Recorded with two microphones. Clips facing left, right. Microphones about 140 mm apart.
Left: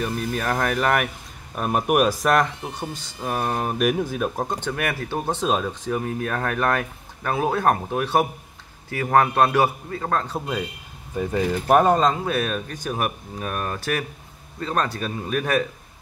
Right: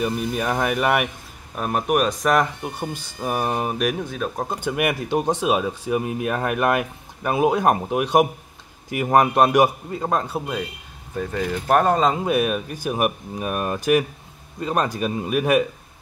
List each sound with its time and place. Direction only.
0.0 s speech: 10° right (ahead or behind)
3.7 s speech: 5° left (ahead or behind)
4.6 s speech: 10° right (ahead or behind)
12.1 s speech: 10° right (ahead or behind)